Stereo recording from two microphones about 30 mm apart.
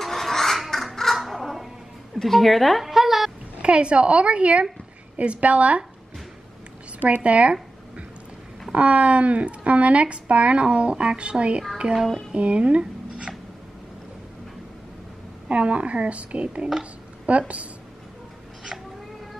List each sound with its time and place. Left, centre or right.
0.0 s a sound: centre
1.1 s crow: centre
2.2 s a woman's voice: centre
2.9 s a sound: centre
3.5 s a woman's voice: right
7.1 s speech: right
8.7 s speech: right
11.9 s music: centre
12.4 s speech: right
15.4 s speech: right